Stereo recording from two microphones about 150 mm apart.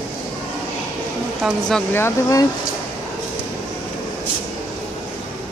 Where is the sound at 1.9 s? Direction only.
15° left (ahead or behind).